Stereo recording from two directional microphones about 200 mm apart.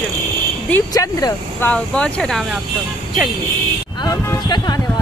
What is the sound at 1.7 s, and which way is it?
Speech, 5° left (ahead or behind).